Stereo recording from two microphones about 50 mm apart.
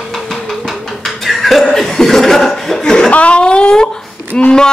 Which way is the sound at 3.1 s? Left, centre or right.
Left.